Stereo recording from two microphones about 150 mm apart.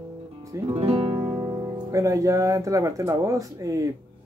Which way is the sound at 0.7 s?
40° right (ahead or behind).